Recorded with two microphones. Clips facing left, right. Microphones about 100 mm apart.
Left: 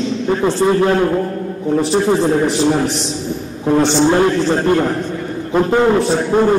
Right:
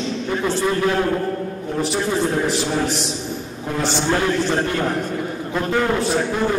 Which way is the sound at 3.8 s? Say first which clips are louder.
Left 7 dB; 30° left (ahead or behind).